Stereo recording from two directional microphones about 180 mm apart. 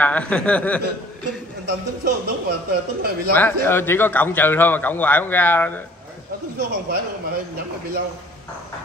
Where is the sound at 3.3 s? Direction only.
10° left (ahead or behind).